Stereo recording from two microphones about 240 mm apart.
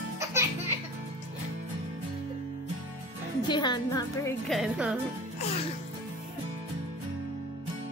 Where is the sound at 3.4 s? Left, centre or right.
Centre.